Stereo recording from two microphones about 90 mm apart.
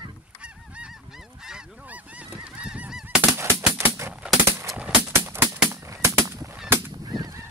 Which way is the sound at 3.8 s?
25° right (ahead or behind).